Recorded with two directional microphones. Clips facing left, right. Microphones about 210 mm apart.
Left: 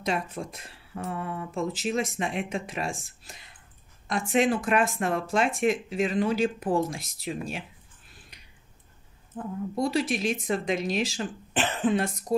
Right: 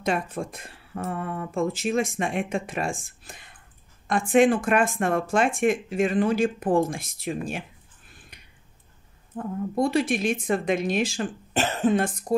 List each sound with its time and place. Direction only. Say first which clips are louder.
0.0 s speech: right 3 dB; 50° right (ahead or behind)
8.3 s a sound: right 3 dB; 55° right (ahead or behind)
9.3 s a woman's voice: right 3 dB; 65° right (ahead or behind)
9.8 s speech: right 3 dB; 55° right (ahead or behind)